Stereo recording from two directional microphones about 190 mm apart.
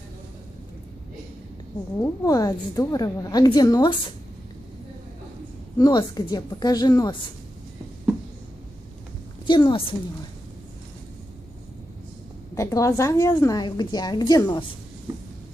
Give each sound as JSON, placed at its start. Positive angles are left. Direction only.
{"t": 2.0, "sound": "a woman's voice", "side_deg": 20}
{"t": 5.8, "sound": "a woman's voice", "side_deg": 20}
{"t": 9.5, "sound": "a woman's voice", "side_deg": 25}
{"t": 12.5, "sound": "a woman's voice", "side_deg": 15}